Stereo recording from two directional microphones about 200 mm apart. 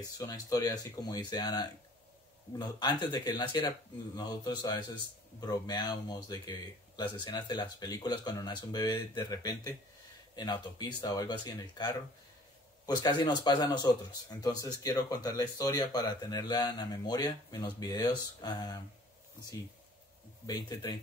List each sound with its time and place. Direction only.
0.0 s speech: 20° left (ahead or behind)
2.8 s speech: 20° left (ahead or behind)
20.4 s speech: 20° left (ahead or behind)